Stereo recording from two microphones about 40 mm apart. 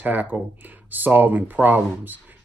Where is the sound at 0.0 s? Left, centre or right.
Right.